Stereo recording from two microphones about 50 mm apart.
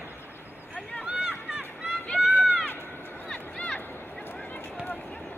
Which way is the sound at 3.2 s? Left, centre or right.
Centre.